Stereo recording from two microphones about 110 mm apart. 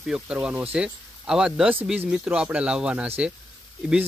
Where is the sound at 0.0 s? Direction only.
5° right (ahead or behind).